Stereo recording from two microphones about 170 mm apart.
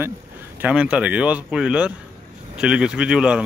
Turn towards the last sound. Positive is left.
turn(degrees=-5)  # may be behind; listen again after turning